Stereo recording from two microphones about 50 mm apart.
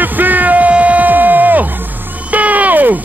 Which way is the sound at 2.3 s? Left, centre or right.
Right.